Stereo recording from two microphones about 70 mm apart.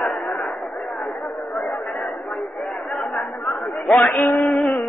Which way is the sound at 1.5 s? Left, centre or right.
Centre.